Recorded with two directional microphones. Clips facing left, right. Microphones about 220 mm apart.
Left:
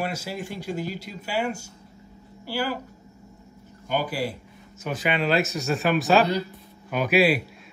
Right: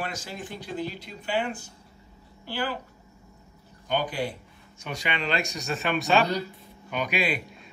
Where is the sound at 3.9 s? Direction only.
5° left (ahead or behind).